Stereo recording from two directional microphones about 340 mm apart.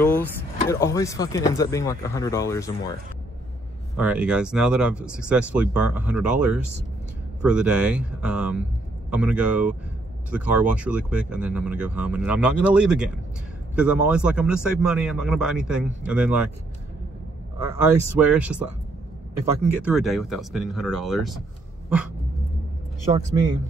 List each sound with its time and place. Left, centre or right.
0.0 s speech: centre
3.9 s speech: centre
17.6 s speech: centre
19.7 s speech: centre
21.8 s dog: centre
23.1 s speech: centre